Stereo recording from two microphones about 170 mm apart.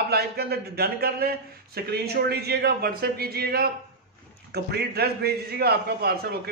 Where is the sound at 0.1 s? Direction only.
70° right (ahead or behind).